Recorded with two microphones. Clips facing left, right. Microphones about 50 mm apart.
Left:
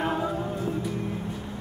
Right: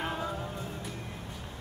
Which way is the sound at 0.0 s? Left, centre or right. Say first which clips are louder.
Left 7 dB; centre.